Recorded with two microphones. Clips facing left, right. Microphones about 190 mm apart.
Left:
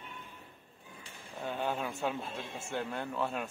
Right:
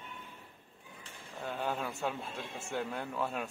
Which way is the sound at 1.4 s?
5° left (ahead or behind).